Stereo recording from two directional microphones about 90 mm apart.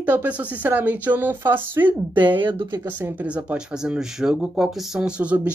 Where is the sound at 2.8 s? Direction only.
20° right (ahead or behind).